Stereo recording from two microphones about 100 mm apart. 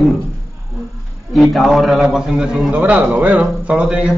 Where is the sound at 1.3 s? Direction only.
Centre (ahead or behind).